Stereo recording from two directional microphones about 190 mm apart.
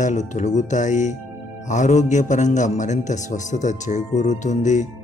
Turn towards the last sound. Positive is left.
turn(degrees=40)  # may be behind; listen again after turning